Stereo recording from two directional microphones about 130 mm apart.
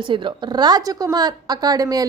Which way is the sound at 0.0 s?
40° right (ahead or behind).